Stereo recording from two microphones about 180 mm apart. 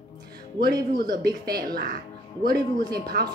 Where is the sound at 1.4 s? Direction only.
55° right (ahead or behind).